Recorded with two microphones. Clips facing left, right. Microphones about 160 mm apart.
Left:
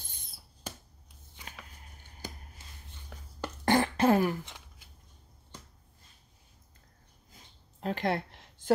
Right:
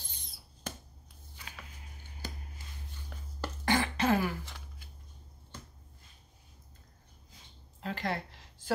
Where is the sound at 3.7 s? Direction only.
50° left (ahead or behind).